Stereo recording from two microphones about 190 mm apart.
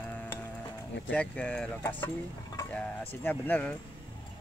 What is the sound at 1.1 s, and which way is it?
Speech, 5° left (ahead or behind).